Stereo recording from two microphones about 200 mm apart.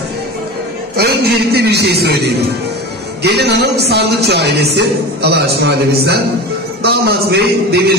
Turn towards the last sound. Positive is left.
turn(degrees=-55)  # may be behind; listen again after turning